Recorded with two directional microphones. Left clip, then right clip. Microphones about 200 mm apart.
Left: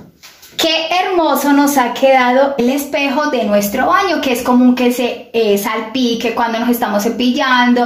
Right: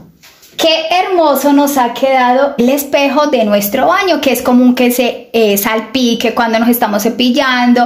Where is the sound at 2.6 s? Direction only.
50° right (ahead or behind).